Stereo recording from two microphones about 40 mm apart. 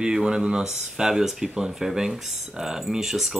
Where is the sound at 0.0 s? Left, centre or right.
Centre.